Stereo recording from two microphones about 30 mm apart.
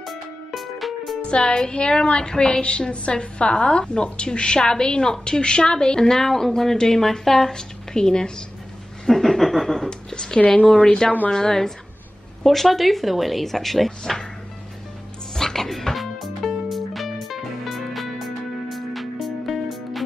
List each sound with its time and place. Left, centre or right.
0.0 s music: centre
1.2 s music: left
1.7 s a woman's voice: left
9.0 s chuckle: centre
9.8 s a woman's voice: left
12.4 s speech: centre
15.3 s music: centre